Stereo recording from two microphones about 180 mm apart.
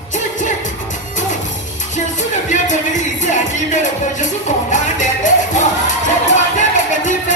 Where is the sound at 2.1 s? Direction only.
40° left (ahead or behind).